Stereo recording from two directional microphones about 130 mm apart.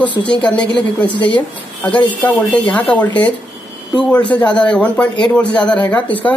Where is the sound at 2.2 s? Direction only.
15° left (ahead or behind).